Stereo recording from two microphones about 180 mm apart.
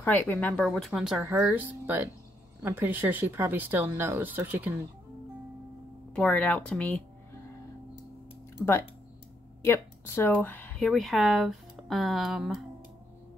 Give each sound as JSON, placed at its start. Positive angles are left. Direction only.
{"t": 0.0, "sound": "speech", "side_deg": 10}
{"t": 6.1, "sound": "speech", "side_deg": 5}
{"t": 9.7, "sound": "speech", "side_deg": 15}